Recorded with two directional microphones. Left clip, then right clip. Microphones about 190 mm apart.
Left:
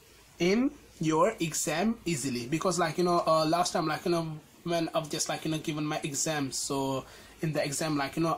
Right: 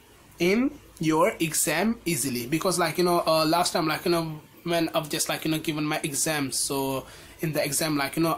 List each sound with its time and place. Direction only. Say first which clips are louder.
0.4 s speech: right 4 dB; 15° left (ahead or behind)